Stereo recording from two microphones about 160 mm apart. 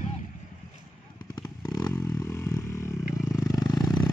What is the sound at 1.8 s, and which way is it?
Vehicle, 20° left (ahead or behind).